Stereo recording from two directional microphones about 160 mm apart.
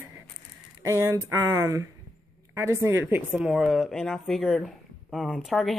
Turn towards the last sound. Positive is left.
turn(degrees=0)  # may be behind; listen again after turning